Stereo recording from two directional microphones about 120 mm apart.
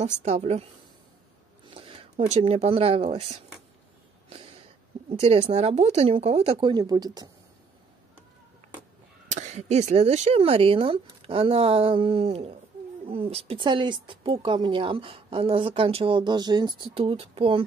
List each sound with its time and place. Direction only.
0.2 s speech: 65° right (ahead or behind)
1.7 s a sound: 50° right (ahead or behind)
2.2 s speech: 65° right (ahead or behind)
4.3 s a sound: 55° right (ahead or behind)
5.2 s speech: 60° right (ahead or behind)
6.7 s speech: 35° right (ahead or behind)
9.3 s speech: 75° right (ahead or behind); by 17.6 s 50° right (ahead or behind)